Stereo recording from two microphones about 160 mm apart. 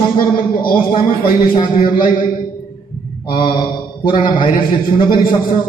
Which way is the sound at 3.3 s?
30° left (ahead or behind).